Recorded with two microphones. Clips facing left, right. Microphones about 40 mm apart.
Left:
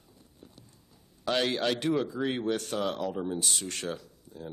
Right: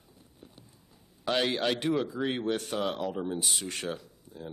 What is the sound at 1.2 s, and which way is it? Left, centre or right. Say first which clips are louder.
Speech: even; centre.